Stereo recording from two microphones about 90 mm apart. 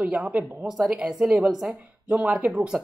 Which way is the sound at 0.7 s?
5° right (ahead or behind).